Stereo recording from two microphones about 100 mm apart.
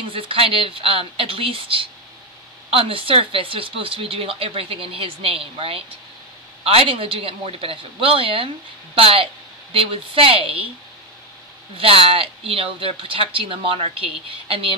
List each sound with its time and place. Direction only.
0.1 s a woman's voice: 65° right (ahead or behind)
11.7 s speech: 65° right (ahead or behind)